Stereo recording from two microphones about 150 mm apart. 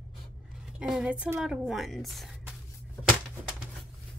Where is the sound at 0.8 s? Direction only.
5° right (ahead or behind).